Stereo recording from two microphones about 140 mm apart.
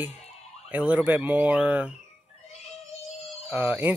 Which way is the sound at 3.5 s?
10° right (ahead or behind).